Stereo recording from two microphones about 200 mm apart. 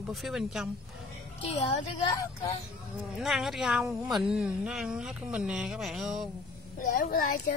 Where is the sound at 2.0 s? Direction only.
20° left (ahead or behind).